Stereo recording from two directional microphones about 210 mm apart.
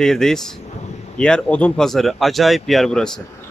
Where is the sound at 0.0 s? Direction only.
Centre (ahead or behind).